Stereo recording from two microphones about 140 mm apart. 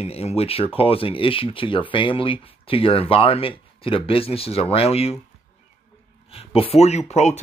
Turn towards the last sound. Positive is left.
turn(degrees=55)  # may be behind; listen again after turning